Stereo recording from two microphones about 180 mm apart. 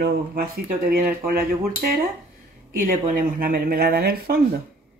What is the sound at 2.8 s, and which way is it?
Speech, 50° right (ahead or behind).